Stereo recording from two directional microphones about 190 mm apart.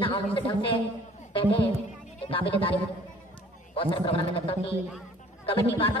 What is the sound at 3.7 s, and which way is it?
Speech, 25° left (ahead or behind).